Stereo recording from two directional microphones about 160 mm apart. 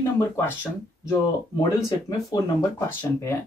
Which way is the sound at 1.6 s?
25° left (ahead or behind).